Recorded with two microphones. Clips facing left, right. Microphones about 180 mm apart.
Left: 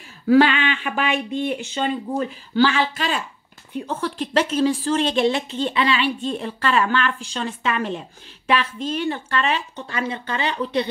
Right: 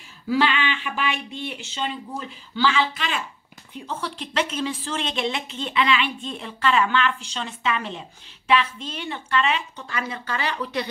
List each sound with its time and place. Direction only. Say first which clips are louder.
0.3 s a woman's voice: left 7 dB; 50° left (ahead or behind)
9.8 s speech: left 4 dB; 30° left (ahead or behind)